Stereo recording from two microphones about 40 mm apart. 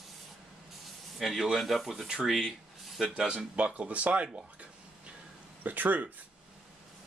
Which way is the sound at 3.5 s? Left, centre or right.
Right.